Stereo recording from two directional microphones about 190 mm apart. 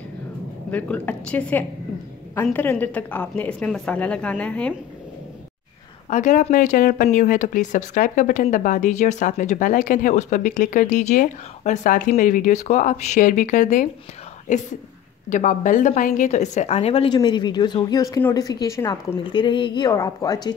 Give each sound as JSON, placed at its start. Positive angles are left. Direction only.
{"t": 0.7, "sound": "a woman's voice", "side_deg": 10}
{"t": 6.0, "sound": "a woman's voice", "side_deg": 40}